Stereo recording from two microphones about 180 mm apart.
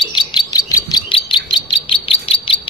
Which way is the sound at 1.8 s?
30° left (ahead or behind).